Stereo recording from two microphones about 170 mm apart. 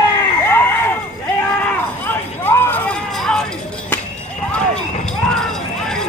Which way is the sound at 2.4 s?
15° left (ahead or behind).